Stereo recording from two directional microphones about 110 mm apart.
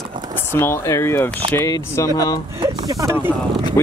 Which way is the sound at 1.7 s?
35° left (ahead or behind).